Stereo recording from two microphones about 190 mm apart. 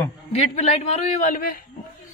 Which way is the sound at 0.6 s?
35° left (ahead or behind).